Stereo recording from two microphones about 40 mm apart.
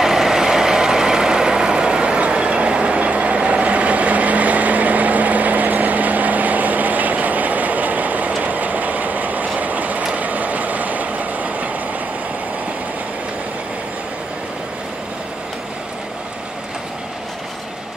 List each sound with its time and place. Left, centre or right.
0.0 s vehicle: centre; by 8.3 s right
8.5 s train: right